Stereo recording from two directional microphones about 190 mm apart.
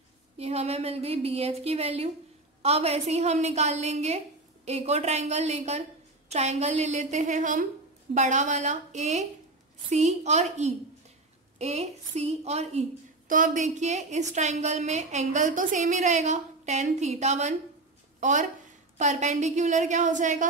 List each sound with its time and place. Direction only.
0.4 s a woman's voice: 35° right (ahead or behind)